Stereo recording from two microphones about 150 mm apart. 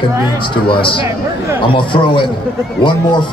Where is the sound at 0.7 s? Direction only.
35° left (ahead or behind).